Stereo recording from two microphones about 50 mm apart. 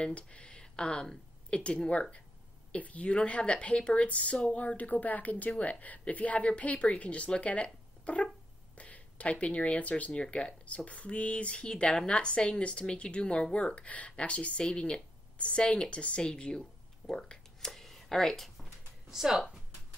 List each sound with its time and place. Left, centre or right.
0.0 s a woman's voice: left; by 19.4 s centre